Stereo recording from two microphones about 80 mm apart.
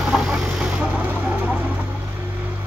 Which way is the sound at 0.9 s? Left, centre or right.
Right.